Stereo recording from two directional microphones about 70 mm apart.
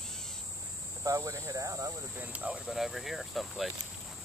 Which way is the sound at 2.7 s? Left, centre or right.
Centre.